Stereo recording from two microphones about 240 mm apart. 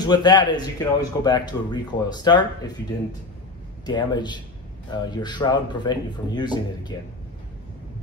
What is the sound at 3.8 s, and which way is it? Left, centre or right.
A man's voice, centre.